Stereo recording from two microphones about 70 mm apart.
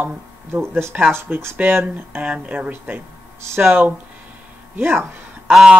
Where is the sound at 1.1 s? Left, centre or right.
Right.